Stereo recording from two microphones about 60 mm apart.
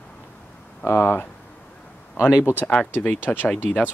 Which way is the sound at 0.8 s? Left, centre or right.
Left.